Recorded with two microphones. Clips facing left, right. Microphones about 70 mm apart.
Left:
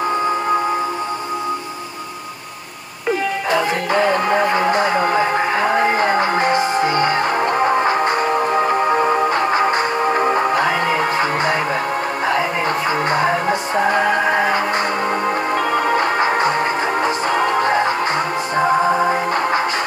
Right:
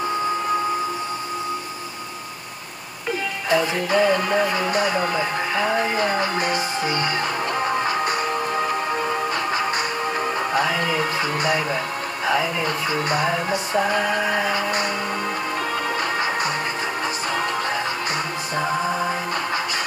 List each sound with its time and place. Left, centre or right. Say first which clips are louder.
3.5 s music: left 1 dB; left